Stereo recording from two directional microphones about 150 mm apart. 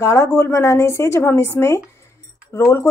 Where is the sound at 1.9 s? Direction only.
20° left (ahead or behind).